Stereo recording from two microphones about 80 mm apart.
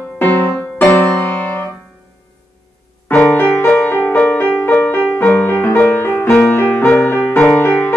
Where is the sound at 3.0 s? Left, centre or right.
Left.